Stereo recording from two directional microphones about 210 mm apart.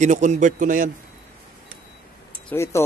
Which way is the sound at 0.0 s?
35° right (ahead or behind).